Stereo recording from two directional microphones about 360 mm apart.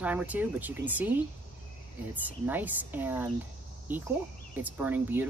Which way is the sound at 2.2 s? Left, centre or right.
Centre.